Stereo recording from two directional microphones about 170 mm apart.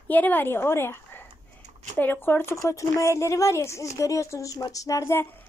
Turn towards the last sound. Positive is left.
turn(degrees=15)  # may be behind; listen again after turning